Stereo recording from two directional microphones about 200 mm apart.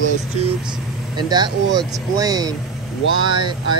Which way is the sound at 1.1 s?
20° right (ahead or behind).